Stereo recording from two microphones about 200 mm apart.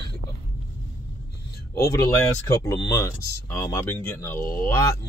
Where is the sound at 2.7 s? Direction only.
15° left (ahead or behind).